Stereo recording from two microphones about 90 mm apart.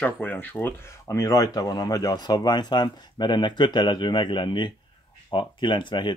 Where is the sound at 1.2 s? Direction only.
40° left (ahead or behind).